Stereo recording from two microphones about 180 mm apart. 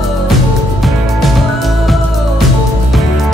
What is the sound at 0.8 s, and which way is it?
Music, centre (ahead or behind).